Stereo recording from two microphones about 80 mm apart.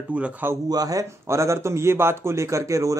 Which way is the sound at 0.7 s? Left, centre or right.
Right.